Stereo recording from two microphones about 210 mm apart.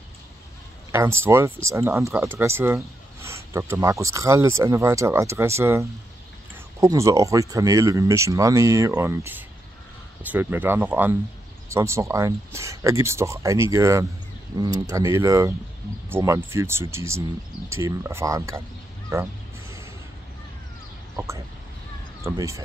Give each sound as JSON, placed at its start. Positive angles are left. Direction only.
{"t": 0.9, "sound": "speech", "side_deg": -10}
{"t": 22.2, "sound": "speech", "side_deg": -15}